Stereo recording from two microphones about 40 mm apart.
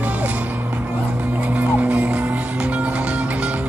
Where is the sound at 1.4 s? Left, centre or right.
Right.